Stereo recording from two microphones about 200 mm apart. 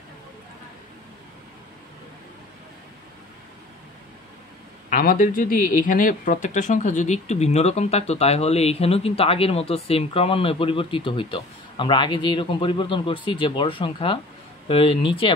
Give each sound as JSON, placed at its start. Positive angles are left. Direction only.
{"t": 4.8, "sound": "speech", "side_deg": 40}